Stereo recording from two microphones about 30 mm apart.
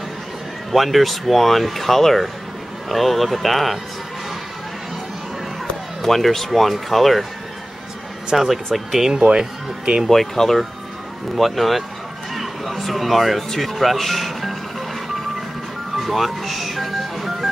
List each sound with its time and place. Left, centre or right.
0.7 s speech: centre
6.0 s speech: centre
8.3 s speech: centre
9.1 s speech: right
10.0 s speech: centre
11.3 s speech: centre
16.0 s speech: centre